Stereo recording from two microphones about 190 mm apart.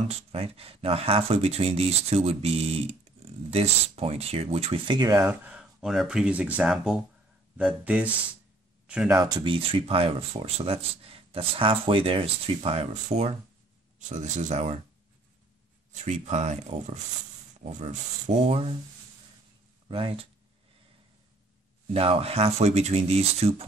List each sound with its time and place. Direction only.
0.1 s speech: 30° right (ahead or behind)
5.2 s speech: 5° right (ahead or behind)
9.2 s speech: 25° right (ahead or behind)
15.9 s speech: 40° right (ahead or behind)
19.9 s speech: 30° right (ahead or behind)
21.9 s speech: 30° right (ahead or behind)